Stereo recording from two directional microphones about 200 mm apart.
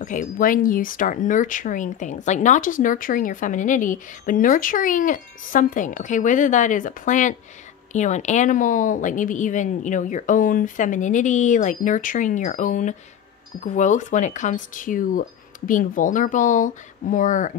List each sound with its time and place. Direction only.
0.0 s speech: 40° left (ahead or behind)